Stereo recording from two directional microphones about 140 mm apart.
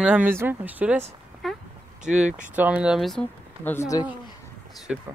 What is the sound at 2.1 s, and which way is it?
Speech, 5° right (ahead or behind).